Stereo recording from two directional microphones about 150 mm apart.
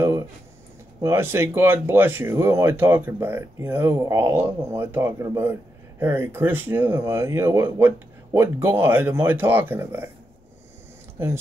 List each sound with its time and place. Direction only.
1.0 s speech: 15° right (ahead or behind)